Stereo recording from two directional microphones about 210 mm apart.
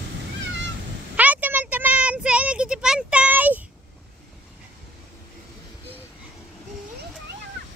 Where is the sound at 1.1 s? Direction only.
5° right (ahead or behind).